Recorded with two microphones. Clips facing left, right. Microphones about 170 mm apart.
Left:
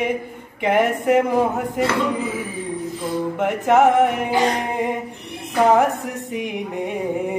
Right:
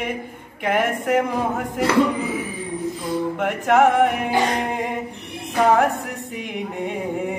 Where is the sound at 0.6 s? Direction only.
20° left (ahead or behind).